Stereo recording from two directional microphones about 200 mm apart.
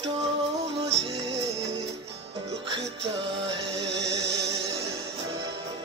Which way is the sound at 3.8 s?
60° right (ahead or behind).